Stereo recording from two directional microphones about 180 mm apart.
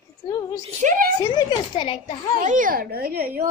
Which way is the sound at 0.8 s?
50° right (ahead or behind).